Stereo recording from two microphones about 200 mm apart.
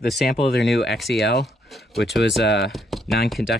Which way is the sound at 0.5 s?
60° left (ahead or behind).